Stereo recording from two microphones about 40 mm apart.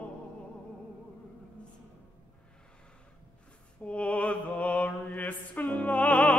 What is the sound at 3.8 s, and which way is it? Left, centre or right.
Mantra, left.